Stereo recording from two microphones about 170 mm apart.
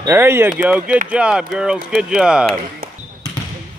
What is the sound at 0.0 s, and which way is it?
Speech, 15° right (ahead or behind).